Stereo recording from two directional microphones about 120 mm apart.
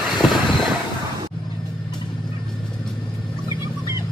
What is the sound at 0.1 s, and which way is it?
Vehicle, centre (ahead or behind).